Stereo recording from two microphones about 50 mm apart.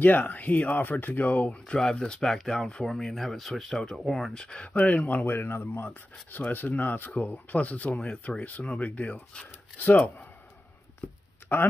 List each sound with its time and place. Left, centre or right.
0.0 s speech: left
1.7 s speech: centre
4.7 s speech: left
5.2 s speech: left
6.3 s speech: left
9.8 s speech: left